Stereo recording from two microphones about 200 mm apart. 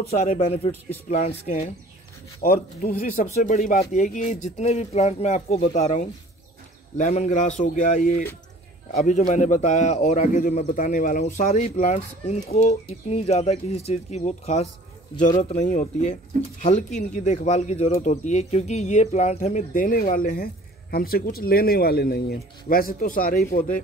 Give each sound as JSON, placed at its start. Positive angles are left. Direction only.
{"t": 0.2, "sound": "speech", "side_deg": 40}
{"t": 2.4, "sound": "speech", "side_deg": 45}